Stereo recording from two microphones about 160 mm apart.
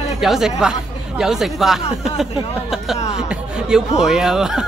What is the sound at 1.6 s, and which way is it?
Speech, 5° right (ahead or behind).